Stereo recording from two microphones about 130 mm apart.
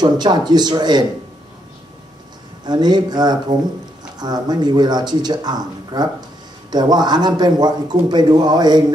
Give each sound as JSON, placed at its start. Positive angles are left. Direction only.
{"t": 0.0, "sound": "a man's voice", "side_deg": -35}
{"t": 2.6, "sound": "a man's voice", "side_deg": -35}